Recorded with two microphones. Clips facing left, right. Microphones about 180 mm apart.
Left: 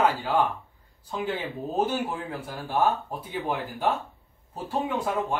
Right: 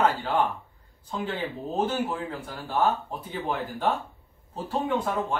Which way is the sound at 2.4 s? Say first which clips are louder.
Left 1 dB; 10° left (ahead or behind).